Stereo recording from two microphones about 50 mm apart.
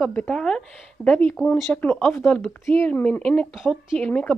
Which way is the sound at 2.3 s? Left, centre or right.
Centre.